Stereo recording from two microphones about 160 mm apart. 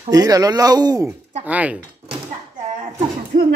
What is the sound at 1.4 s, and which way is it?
Speech, 10° right (ahead or behind).